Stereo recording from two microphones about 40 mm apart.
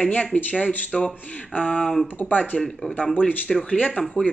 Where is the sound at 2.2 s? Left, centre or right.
Left.